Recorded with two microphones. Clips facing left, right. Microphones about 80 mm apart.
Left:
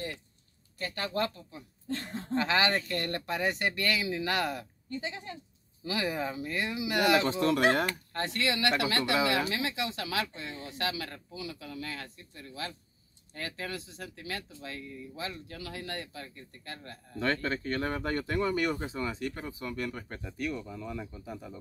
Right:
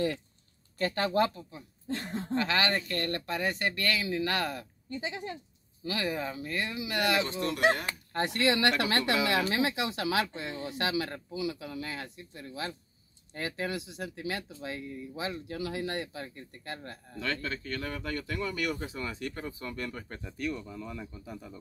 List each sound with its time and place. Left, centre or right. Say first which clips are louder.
1.1 s speech: right 5 dB; centre
2.3 s speech: left 1 dB; centre
4.8 s speech: right 2 dB; centre
5.9 s speech: left 1 dB; centre
7.3 s speech: left 2 dB; left
8.1 s speech: right 3 dB; centre
8.4 s speech: right 2 dB; right
17.2 s speech: left 4 dB; left
18.8 s speech: left 2 dB; centre